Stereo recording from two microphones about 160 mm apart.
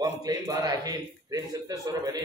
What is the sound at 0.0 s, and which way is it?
A man's voice, 25° right (ahead or behind).